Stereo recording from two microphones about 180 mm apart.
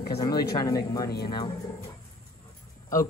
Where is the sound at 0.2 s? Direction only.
20° left (ahead or behind).